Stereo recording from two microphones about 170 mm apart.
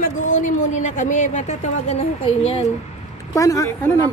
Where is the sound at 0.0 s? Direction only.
50° left (ahead or behind).